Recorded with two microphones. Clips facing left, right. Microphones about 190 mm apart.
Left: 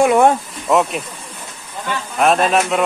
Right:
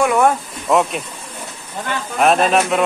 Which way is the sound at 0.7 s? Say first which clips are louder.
Even; centre (ahead or behind).